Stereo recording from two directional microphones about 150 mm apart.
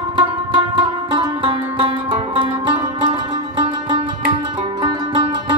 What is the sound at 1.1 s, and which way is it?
Music, 35° right (ahead or behind).